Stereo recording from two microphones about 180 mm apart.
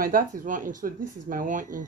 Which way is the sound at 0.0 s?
50° right (ahead or behind).